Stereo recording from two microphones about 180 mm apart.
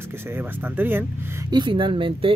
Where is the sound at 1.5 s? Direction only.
25° right (ahead or behind).